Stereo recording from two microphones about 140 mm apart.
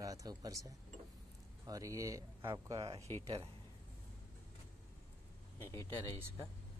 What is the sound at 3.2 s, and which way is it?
Speech, 45° right (ahead or behind).